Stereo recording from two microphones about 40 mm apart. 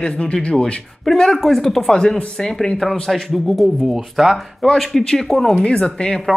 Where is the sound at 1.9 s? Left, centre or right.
Centre.